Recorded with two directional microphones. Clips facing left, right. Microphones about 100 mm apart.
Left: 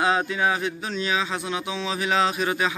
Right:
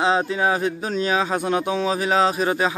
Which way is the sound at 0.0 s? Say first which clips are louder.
Right 3 dB; 30° right (ahead or behind).